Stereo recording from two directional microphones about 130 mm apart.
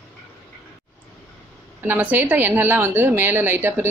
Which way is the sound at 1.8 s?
15° right (ahead or behind).